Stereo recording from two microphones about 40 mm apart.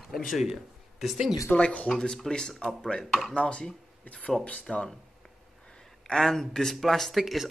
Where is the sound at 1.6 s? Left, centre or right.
Left.